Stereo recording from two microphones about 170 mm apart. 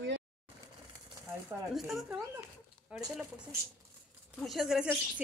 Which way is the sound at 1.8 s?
Centre (ahead or behind).